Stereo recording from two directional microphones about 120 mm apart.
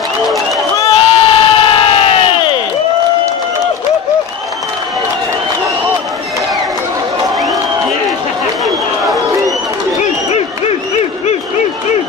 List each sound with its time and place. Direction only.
0.8 s crowd: 50° left (ahead or behind)